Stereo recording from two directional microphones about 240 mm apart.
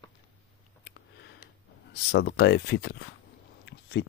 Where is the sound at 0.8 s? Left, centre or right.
Left.